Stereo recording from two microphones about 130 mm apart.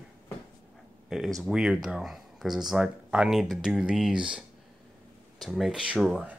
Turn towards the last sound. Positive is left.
turn(degrees=-5)  # may be behind; listen again after turning